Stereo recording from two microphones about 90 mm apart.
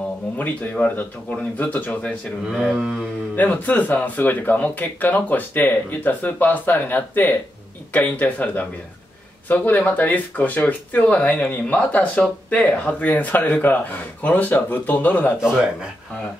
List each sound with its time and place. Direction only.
0.4 s speech: 20° left (ahead or behind)
2.4 s mantra: 5° right (ahead or behind)
3.3 s speech: 20° left (ahead or behind)